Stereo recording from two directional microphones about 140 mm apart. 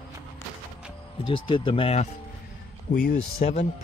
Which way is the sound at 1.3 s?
35° left (ahead or behind).